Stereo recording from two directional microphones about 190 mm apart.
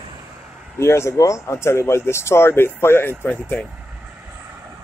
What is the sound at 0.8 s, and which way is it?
Speech, 15° left (ahead or behind).